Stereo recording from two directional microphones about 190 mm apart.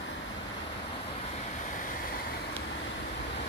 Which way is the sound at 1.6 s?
45° left (ahead or behind).